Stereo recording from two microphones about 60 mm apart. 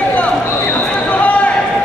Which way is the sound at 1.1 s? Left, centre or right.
Left.